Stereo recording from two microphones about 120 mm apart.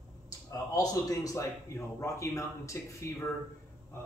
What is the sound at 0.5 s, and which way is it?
A man's voice, 30° left (ahead or behind).